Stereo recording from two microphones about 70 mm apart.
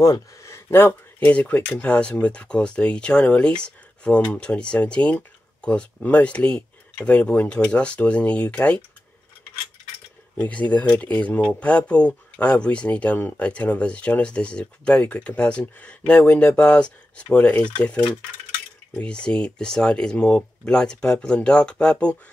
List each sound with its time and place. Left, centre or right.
0.4 s a sound: left
1.3 s speech: left
10.3 s speech: centre